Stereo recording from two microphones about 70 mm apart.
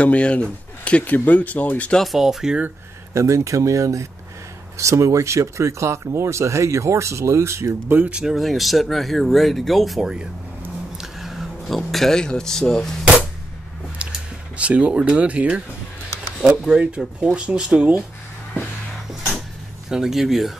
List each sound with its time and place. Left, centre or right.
0.0 s speech: centre
2.0 s speech: centre
3.1 s speech: right
8.1 s speech: centre
14.6 s speech: centre
19.9 s speech: centre